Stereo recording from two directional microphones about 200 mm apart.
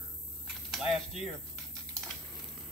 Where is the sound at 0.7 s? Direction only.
Centre (ahead or behind).